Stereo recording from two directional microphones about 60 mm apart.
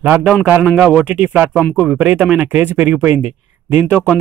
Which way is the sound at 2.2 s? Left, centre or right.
Centre.